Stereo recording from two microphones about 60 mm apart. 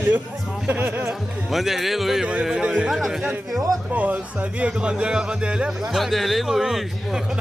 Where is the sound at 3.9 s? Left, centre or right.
Right.